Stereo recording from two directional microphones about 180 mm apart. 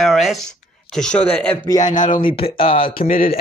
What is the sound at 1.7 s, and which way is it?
Speech, 20° left (ahead or behind).